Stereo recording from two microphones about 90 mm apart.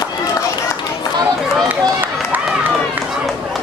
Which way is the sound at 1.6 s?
20° right (ahead or behind).